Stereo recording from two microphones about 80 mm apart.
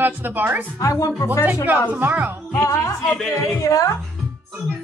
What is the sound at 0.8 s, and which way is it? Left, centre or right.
Speech, left.